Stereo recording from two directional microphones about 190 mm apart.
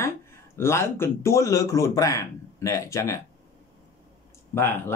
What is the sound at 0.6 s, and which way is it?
Speech, 15° left (ahead or behind).